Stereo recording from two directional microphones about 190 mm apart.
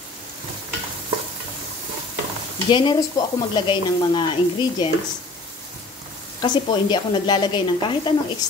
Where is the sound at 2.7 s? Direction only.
25° left (ahead or behind).